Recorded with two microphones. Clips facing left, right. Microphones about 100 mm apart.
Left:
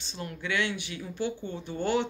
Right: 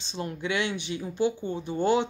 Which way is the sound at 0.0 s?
25° right (ahead or behind).